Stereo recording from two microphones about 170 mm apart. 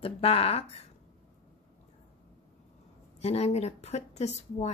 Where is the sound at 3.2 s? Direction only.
40° left (ahead or behind).